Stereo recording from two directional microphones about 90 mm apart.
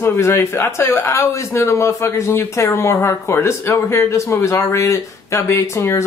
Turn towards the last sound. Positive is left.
turn(degrees=35)  # may be behind; listen again after turning